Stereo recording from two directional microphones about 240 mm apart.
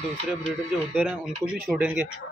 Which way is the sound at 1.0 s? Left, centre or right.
Centre.